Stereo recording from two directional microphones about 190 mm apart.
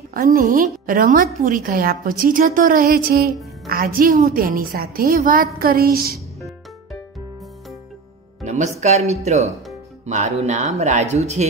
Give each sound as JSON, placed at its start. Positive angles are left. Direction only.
{"t": 0.1, "sound": "a woman's voice", "side_deg": -45}
{"t": 8.5, "sound": "speech", "side_deg": -35}